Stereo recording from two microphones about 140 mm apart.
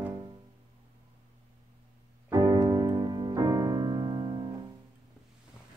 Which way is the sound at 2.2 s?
30° right (ahead or behind).